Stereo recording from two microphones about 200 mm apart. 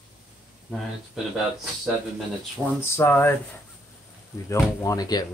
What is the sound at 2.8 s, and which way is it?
Speech, 10° left (ahead or behind).